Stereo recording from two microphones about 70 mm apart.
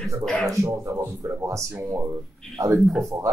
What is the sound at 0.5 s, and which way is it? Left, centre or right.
Speech, right.